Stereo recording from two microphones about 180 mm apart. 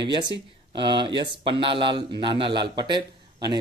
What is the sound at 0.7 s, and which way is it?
Speech, 25° right (ahead or behind).